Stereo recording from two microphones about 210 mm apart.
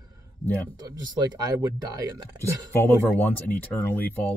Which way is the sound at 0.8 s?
20° right (ahead or behind).